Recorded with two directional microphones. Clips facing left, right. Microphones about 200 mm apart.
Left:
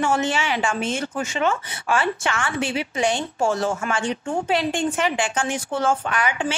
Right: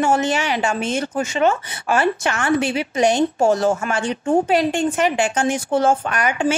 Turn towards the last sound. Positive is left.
turn(degrees=-45)  # may be behind; listen again after turning